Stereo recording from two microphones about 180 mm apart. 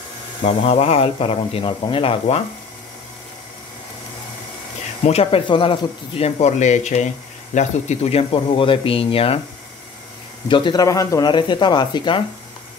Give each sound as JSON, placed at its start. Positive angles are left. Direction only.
{"t": 0.4, "sound": "speech", "side_deg": 35}
{"t": 5.0, "sound": "speech", "side_deg": 35}
{"t": 10.5, "sound": "speech", "side_deg": 25}